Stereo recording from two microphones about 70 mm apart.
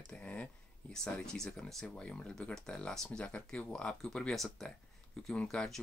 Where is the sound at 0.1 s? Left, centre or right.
Centre.